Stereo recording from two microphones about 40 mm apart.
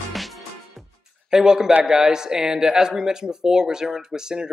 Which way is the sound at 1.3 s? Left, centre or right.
Centre.